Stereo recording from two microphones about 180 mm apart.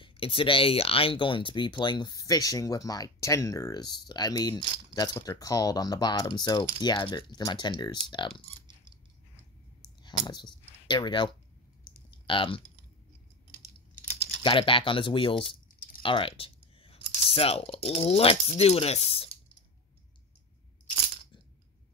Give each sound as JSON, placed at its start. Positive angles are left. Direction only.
{"t": 0.0, "sound": "speech", "side_deg": 30}
{"t": 10.4, "sound": "speech", "side_deg": 25}
{"t": 14.4, "sound": "speech", "side_deg": 30}